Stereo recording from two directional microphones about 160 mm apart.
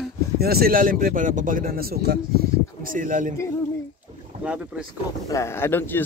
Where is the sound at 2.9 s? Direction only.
55° right (ahead or behind).